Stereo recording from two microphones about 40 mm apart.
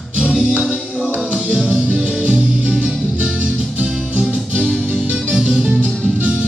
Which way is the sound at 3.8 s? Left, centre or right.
Right.